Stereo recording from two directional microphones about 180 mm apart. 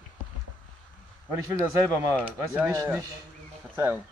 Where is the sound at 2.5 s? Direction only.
15° right (ahead or behind).